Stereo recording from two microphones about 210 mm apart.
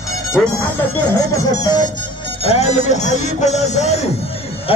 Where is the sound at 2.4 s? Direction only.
30° left (ahead or behind).